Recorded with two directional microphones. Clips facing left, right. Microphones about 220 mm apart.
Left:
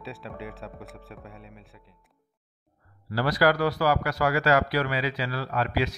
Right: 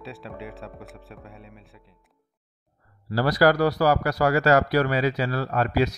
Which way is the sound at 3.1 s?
40° right (ahead or behind).